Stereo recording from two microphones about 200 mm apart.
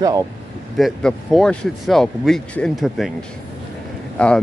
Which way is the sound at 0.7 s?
Centre (ahead or behind).